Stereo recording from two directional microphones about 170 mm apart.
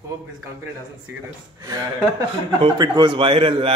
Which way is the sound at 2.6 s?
25° right (ahead or behind).